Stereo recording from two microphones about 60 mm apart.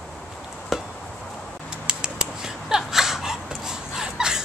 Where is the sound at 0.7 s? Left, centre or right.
Centre.